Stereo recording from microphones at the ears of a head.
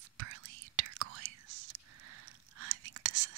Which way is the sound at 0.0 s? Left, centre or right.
Right.